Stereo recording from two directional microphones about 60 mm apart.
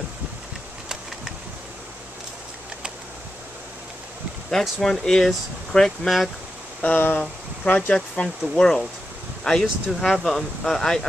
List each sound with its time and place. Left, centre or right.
4.5 s speech: centre
6.8 s speech: left
7.9 s speech: centre